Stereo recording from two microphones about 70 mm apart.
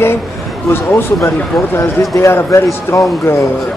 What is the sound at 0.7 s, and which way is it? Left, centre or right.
Speech, left.